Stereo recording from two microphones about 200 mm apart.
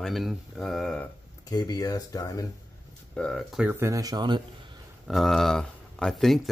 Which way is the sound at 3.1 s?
5° left (ahead or behind).